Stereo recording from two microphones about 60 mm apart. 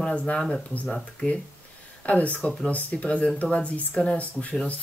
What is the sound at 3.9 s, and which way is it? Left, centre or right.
Speech, centre.